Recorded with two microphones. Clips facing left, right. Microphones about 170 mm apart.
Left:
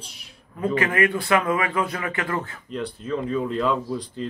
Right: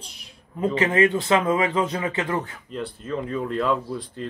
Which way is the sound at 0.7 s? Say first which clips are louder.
Right 3 dB; 20° right (ahead or behind).